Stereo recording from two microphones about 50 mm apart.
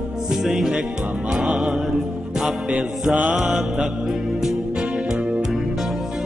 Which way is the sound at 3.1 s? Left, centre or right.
Right.